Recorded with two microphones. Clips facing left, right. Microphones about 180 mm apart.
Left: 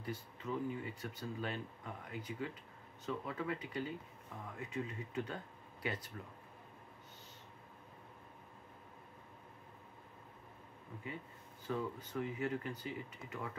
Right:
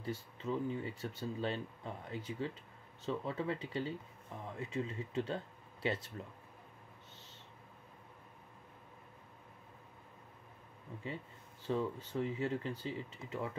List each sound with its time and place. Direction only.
0.0 s speech: 25° right (ahead or behind)
11.6 s speech: 25° right (ahead or behind)